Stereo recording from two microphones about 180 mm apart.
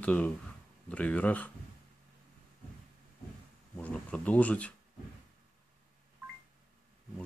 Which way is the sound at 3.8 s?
5° left (ahead or behind).